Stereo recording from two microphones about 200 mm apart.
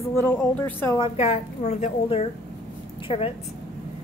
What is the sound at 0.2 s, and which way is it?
Speech, 10° left (ahead or behind).